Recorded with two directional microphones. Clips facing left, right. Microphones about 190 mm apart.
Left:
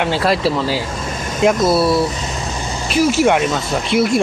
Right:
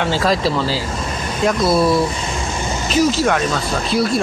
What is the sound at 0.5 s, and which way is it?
Speech, 15° left (ahead or behind).